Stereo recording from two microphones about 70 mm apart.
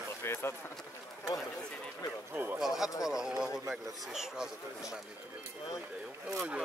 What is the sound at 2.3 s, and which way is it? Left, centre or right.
Speech, right.